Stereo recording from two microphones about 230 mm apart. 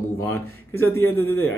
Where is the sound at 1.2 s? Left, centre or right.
Left.